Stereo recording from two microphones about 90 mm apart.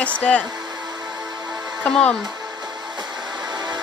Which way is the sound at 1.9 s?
10° left (ahead or behind).